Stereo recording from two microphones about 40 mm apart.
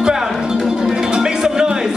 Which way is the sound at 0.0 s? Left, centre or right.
Centre.